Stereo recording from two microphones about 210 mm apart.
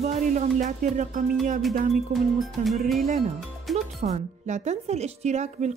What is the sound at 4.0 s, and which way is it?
Speech, 35° right (ahead or behind).